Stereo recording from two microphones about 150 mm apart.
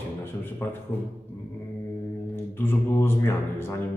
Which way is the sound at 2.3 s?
15° left (ahead or behind).